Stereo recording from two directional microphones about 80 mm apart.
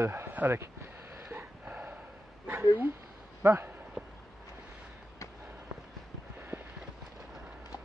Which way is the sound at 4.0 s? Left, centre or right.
Centre.